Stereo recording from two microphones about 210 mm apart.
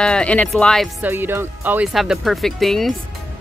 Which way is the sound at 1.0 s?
10° right (ahead or behind).